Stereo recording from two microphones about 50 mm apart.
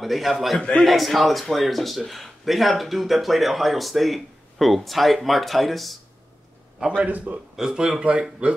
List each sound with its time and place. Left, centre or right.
0.0 s speech: centre
7.0 s a man's voice: right
7.5 s a man's voice: centre